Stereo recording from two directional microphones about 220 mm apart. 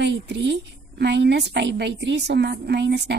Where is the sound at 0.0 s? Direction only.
50° right (ahead or behind).